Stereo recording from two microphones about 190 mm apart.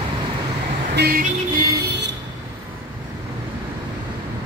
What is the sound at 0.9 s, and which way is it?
Vehicle, 55° right (ahead or behind).